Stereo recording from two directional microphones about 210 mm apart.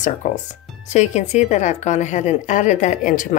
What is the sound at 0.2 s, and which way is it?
A woman's voice, 35° left (ahead or behind).